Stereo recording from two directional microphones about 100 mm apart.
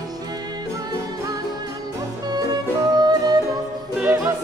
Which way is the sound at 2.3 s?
45° right (ahead or behind).